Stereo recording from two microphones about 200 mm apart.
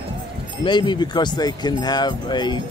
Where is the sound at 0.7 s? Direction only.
20° left (ahead or behind).